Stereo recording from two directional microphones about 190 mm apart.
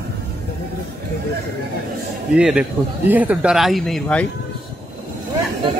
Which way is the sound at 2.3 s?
5° right (ahead or behind).